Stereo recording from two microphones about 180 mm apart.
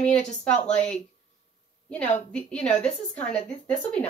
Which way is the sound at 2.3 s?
5° left (ahead or behind).